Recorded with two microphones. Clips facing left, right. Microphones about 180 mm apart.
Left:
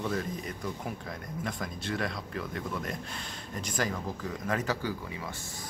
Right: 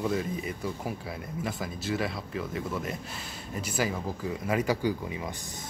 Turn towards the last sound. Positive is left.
turn(degrees=-15)  # may be behind; listen again after turning